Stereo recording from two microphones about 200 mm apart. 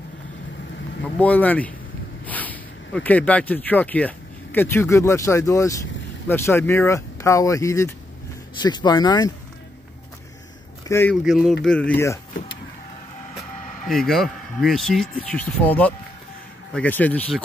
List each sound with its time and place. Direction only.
1.2 s speech: 10° left (ahead or behind)
10.9 s speech: 10° left (ahead or behind)
11.2 s speech: centre (ahead or behind)
13.8 s speech: centre (ahead or behind)